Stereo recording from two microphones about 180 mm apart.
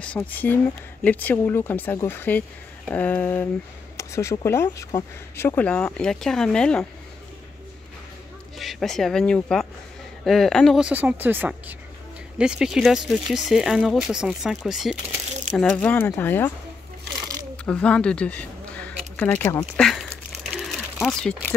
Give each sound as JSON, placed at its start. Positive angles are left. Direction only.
{"t": 0.0, "sound": "speech", "side_deg": 10}
{"t": 3.9, "sound": "a sound", "side_deg": 15}
{"t": 4.5, "sound": "speech", "side_deg": 15}
{"t": 8.5, "sound": "speech", "side_deg": 0}
{"t": 17.6, "sound": "speech", "side_deg": 5}
{"t": 20.6, "sound": "a sound", "side_deg": 0}